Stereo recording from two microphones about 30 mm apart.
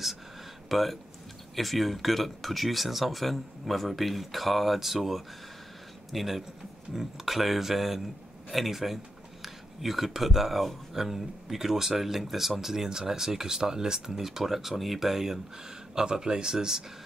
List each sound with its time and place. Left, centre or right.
0.7 s speech: centre
15.9 s speech: centre